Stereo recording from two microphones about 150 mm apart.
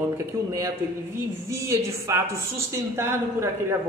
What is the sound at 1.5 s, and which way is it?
A woman's voice, 20° right (ahead or behind).